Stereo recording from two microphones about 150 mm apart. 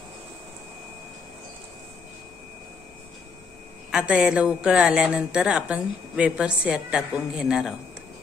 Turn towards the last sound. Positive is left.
turn(degrees=-5)  # may be behind; listen again after turning